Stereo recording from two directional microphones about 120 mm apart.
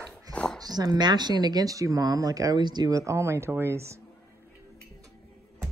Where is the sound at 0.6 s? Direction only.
35° right (ahead or behind).